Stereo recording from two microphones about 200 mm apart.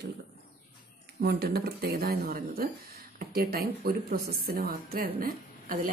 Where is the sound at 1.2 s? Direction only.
50° right (ahead or behind).